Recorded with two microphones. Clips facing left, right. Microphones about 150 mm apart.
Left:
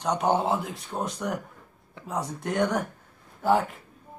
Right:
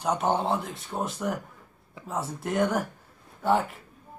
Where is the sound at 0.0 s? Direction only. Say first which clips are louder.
Left 1 dB; centre (ahead or behind).